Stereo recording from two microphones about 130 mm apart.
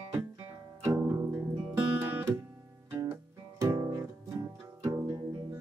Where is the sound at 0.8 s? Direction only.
25° right (ahead or behind).